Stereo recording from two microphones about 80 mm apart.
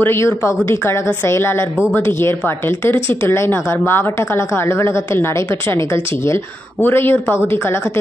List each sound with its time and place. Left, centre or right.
0.0 s a woman's voice: left